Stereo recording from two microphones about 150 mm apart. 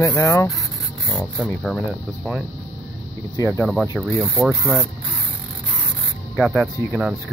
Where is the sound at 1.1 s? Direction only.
10° left (ahead or behind).